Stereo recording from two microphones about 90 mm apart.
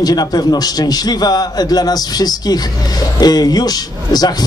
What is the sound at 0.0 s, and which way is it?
A man's voice, 45° left (ahead or behind).